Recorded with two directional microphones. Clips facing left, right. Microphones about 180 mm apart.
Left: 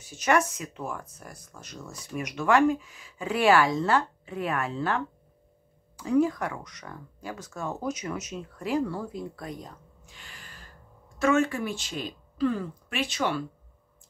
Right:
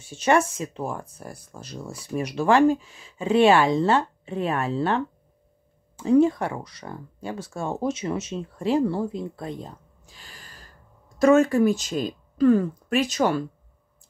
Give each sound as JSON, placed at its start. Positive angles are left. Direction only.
{"t": 0.0, "sound": "speech", "side_deg": -30}